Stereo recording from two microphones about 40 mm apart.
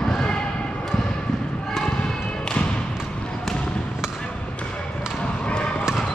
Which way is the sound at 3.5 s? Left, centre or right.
Centre.